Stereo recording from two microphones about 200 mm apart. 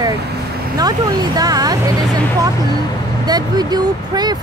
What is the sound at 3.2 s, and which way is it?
Speech, 20° right (ahead or behind).